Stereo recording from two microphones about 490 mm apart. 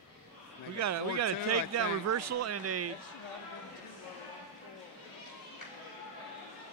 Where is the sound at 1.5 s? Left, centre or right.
Right.